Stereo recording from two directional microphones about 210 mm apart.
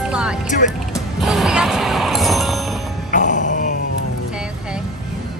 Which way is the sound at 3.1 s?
35° left (ahead or behind).